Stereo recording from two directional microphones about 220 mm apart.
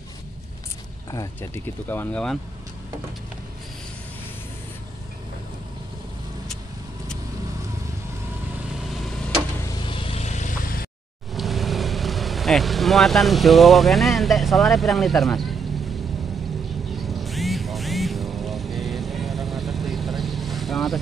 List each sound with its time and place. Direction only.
1.1 s speech: 15° left (ahead or behind)
9.8 s vehicle: 25° left (ahead or behind); by 10.9 s 40° left (ahead or behind)
11.3 s speech: centre (ahead or behind)
16.9 s vehicle: centre (ahead or behind)